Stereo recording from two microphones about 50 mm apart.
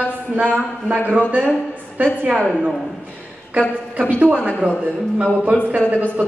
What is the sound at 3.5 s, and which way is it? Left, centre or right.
A man's voice, right.